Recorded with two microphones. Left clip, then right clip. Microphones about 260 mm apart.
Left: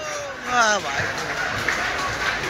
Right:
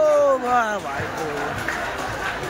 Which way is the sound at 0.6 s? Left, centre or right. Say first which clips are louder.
Left 3 dB; centre.